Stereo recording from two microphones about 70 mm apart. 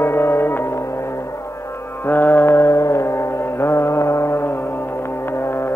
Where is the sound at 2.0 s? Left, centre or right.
Left.